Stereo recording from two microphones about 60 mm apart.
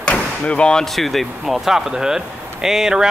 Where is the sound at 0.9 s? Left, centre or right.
Centre.